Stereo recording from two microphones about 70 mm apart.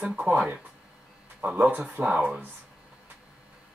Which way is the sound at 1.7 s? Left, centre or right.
Right.